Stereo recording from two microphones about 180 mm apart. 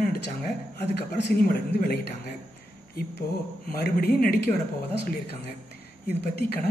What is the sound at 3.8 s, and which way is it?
Speech, 55° left (ahead or behind).